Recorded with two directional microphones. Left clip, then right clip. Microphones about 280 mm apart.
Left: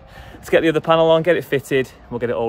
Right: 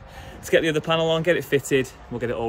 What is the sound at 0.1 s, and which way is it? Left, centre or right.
Speech, centre.